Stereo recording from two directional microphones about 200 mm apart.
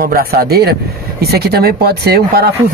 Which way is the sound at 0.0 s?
50° right (ahead or behind).